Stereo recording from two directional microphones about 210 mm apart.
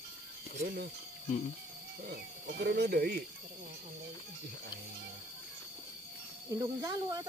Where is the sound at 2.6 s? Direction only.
50° right (ahead or behind).